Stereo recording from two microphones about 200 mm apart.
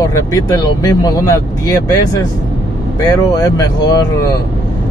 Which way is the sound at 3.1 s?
15° left (ahead or behind).